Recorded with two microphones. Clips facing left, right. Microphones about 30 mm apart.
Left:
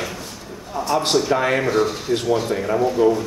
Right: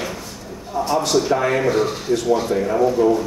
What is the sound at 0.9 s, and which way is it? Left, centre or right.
Speech, left.